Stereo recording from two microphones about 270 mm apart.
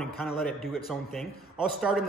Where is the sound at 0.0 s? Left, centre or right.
Centre.